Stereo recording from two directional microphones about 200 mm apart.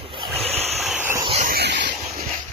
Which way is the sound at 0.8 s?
5° right (ahead or behind).